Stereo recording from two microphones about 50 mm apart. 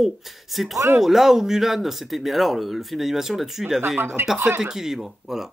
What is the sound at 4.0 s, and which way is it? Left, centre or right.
Speech, right.